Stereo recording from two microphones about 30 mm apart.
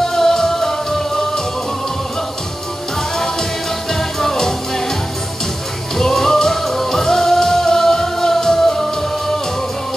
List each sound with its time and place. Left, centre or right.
0.0 s music: centre
3.9 s music: centre
5.9 s music: centre